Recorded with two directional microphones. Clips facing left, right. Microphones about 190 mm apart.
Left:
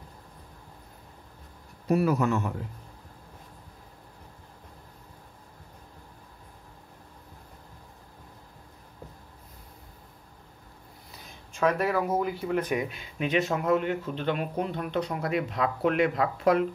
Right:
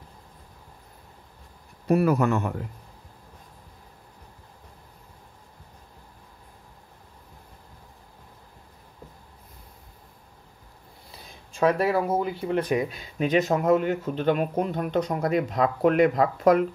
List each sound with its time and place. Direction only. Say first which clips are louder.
1.9 s speech: right 3 dB; 55° right (ahead or behind)
11.5 s speech: right 3 dB; 30° right (ahead or behind)